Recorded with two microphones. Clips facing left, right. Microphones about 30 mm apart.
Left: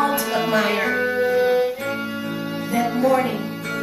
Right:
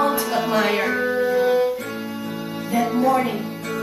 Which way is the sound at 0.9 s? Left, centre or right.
Centre.